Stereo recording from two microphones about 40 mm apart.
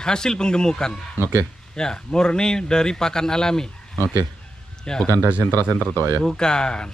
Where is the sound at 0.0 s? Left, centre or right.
Centre.